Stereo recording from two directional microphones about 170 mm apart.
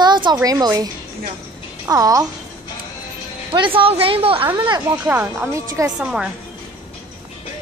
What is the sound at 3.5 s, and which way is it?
Speech, 30° right (ahead or behind).